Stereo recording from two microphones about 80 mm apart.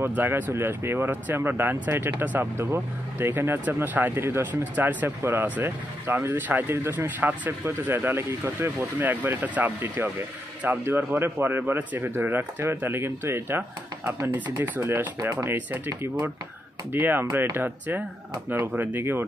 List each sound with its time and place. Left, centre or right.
0.0 s speech: right